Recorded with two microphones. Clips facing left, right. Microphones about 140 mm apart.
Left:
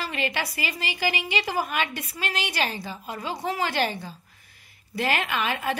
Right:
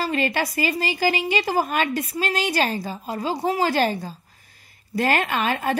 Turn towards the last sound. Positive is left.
turn(degrees=-40)  # may be behind; listen again after turning